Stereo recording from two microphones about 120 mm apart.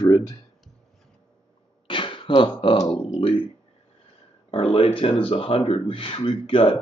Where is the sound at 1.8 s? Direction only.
45° left (ahead or behind).